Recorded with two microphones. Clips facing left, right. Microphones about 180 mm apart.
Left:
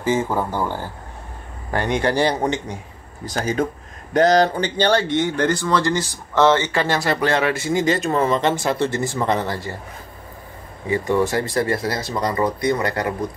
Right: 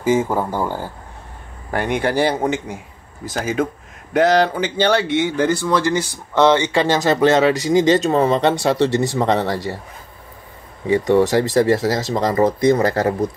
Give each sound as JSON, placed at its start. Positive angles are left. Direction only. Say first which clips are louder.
{"t": 0.0, "sound": "speech", "louder": "right 3 dB", "side_deg": -10}
{"t": 10.9, "sound": "speech", "louder": "right 5 dB", "side_deg": -20}